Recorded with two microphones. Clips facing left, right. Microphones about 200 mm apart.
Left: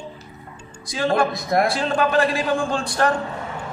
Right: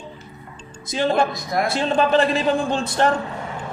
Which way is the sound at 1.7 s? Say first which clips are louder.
Right 2 dB; 25° right (ahead or behind).